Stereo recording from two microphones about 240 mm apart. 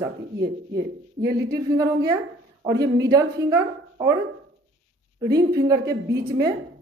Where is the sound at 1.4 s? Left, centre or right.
Centre.